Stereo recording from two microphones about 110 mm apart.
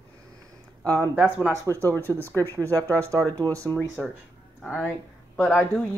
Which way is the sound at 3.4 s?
30° right (ahead or behind).